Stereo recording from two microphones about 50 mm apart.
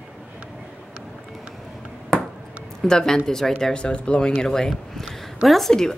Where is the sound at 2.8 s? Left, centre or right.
Centre.